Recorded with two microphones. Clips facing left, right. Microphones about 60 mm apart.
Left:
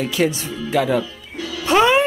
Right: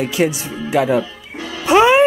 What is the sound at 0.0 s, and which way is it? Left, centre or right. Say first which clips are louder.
Speech: right 2 dB; centre.